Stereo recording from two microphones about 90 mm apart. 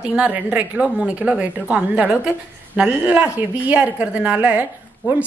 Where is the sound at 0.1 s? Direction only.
10° right (ahead or behind).